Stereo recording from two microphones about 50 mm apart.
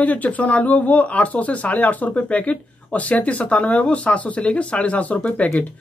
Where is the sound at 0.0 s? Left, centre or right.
Left.